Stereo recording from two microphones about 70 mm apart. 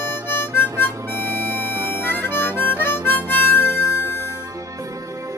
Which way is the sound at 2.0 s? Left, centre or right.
Left.